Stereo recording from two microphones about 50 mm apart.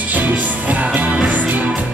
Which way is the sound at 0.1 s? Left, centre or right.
Right.